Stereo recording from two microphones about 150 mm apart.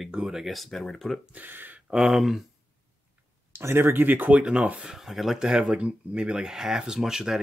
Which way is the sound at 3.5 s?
15° right (ahead or behind).